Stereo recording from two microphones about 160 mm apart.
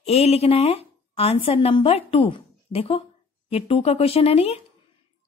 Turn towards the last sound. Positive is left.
turn(degrees=40)  # may be behind; listen again after turning